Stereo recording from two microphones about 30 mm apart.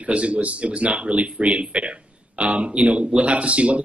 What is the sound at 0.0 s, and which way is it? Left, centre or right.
Speech, right.